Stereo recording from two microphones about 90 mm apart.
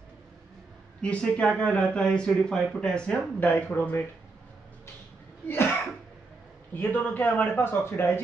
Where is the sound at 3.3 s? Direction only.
20° left (ahead or behind).